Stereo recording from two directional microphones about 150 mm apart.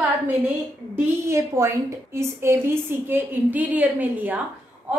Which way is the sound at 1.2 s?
20° right (ahead or behind).